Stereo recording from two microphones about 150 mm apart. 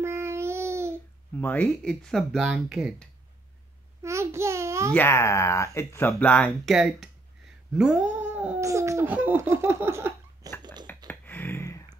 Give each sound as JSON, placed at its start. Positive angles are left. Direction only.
{"t": 0.0, "sound": "babbling", "side_deg": -15}
{"t": 1.3, "sound": "speech", "side_deg": 10}
{"t": 4.0, "sound": "a sound", "side_deg": -20}
{"t": 4.9, "sound": "speech", "side_deg": 15}
{"t": 6.7, "sound": "speech", "side_deg": 0}
{"t": 7.7, "sound": "cat", "side_deg": -5}
{"t": 8.6, "sound": "laughter", "side_deg": -20}
{"t": 10.6, "sound": "a sound", "side_deg": -30}
{"t": 11.1, "sound": "a sound", "side_deg": 15}